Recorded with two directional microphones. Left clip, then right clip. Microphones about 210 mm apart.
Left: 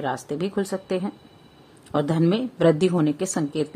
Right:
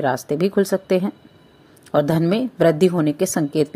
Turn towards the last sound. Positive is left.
turn(degrees=-10)  # may be behind; listen again after turning